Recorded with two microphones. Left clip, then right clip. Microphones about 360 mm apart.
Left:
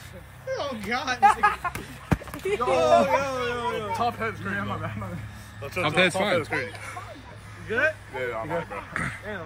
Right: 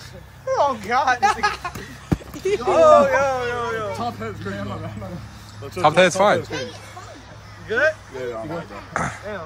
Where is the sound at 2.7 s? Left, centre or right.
Right.